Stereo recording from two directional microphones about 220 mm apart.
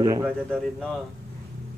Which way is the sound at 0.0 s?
15° right (ahead or behind).